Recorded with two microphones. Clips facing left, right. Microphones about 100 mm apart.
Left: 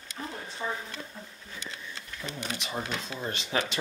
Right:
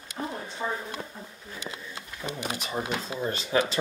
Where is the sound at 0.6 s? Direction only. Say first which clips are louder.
Right 2 dB; 35° right (ahead or behind).